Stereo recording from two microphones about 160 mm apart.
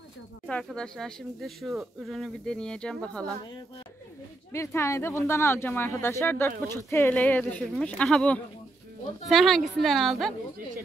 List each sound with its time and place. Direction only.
0.5 s speech: 5° left (ahead or behind)
4.5 s speech: 15° left (ahead or behind); by 10.3 s centre (ahead or behind)